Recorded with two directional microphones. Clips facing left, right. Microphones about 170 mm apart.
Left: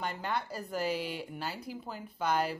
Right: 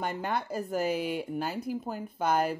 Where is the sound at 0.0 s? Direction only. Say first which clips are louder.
Right 3 dB; 50° right (ahead or behind).